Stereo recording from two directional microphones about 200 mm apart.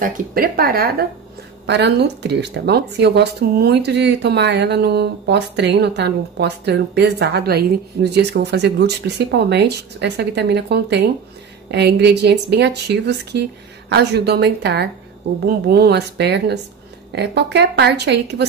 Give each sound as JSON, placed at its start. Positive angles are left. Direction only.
{"t": 0.0, "sound": "speech", "side_deg": -45}